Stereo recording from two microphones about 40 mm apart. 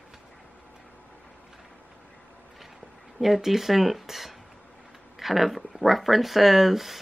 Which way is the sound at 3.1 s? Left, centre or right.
Centre.